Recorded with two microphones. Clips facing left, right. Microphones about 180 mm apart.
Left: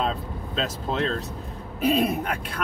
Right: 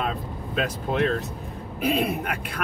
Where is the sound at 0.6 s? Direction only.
10° right (ahead or behind).